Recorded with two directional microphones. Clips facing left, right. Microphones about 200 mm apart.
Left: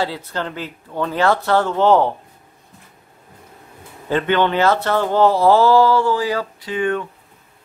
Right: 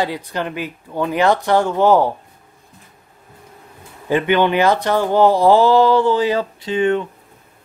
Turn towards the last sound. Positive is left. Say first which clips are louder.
# right 4 dB
turn(degrees=-25)  # may be behind; listen again after turning